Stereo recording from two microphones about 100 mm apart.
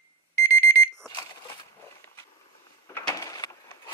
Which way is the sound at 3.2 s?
35° left (ahead or behind).